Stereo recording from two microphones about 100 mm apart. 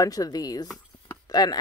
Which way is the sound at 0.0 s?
35° left (ahead or behind).